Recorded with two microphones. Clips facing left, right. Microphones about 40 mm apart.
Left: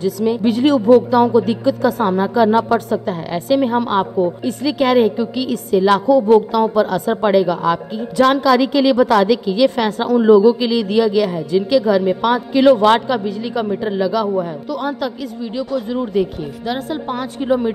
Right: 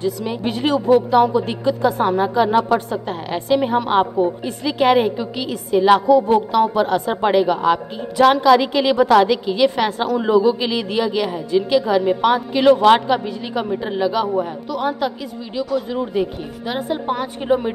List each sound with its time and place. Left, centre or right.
0.3 s a woman's voice: centre
2.0 s a woman's voice: centre
2.9 s a woman's voice: right
3.5 s a woman's voice: centre
3.9 s a woman's voice: centre
8.2 s a woman's voice: centre
10.0 s a woman's voice: centre
14.3 s a woman's voice: centre